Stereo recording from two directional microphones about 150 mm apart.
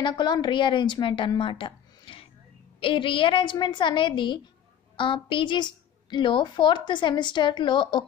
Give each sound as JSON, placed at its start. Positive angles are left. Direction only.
{"t": 0.0, "sound": "a woman's voice", "side_deg": 30}
{"t": 1.4, "sound": "a sound", "side_deg": 35}
{"t": 2.8, "sound": "a woman's voice", "side_deg": 35}